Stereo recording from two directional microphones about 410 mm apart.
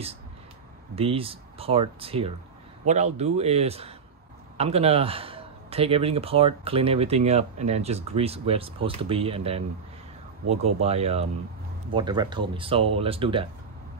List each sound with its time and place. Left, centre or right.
0.9 s a man's voice: centre